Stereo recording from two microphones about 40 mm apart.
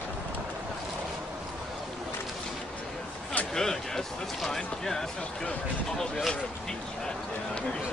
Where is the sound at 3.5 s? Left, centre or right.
Centre.